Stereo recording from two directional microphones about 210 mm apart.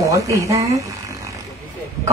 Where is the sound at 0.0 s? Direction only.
15° right (ahead or behind).